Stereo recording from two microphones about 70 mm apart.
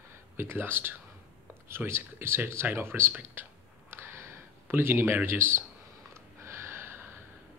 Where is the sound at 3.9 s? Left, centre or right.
Right.